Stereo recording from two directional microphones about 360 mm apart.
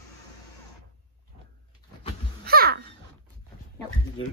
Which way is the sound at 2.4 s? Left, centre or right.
Right.